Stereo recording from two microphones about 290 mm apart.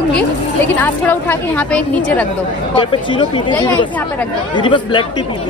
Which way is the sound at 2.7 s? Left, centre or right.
Centre.